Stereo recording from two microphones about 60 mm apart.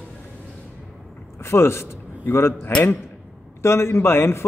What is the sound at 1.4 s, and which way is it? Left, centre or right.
A man's voice, left.